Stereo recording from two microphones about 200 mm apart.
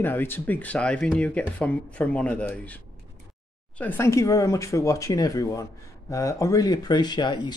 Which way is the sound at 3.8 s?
15° left (ahead or behind).